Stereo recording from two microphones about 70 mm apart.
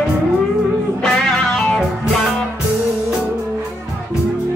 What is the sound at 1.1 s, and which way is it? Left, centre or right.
Music, centre.